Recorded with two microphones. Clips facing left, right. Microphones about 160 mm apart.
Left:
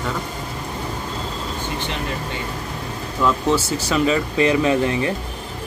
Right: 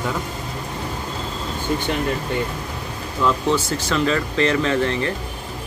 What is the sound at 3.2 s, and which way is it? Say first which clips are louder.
Speech: left 1 dB; 10° left (ahead or behind).